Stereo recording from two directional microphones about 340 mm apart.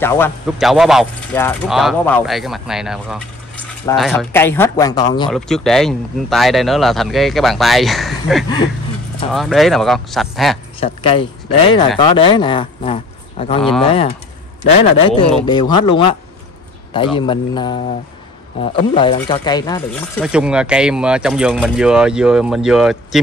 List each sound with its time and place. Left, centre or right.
0.0 s speech: centre
5.3 s speech: centre
10.8 s speech: centre
13.6 s speech: centre
13.8 s speech: centre
20.2 s speech: centre